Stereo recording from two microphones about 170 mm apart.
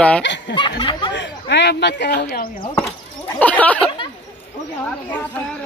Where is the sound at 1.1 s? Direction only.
90° left.